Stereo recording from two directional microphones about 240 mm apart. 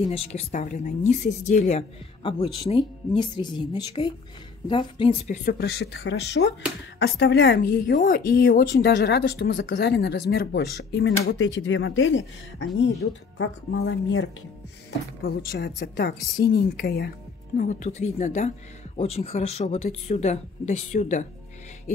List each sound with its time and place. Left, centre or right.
0.0 s a woman's voice: left
15.2 s speech: left
17.6 s a woman's voice: left